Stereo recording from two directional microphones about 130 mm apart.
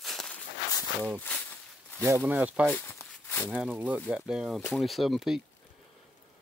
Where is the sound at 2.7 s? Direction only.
20° left (ahead or behind).